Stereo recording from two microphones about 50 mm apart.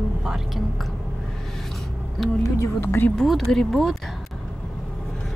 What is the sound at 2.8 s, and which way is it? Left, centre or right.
Speech, left.